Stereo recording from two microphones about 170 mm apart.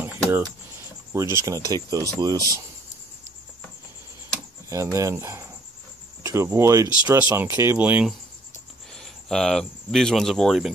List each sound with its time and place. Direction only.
0.0 s a sound: 15° right (ahead or behind)
1.1 s speech: 15° right (ahead or behind)
4.9 s speech: 20° right (ahead or behind)
8.9 s speech: 5° left (ahead or behind)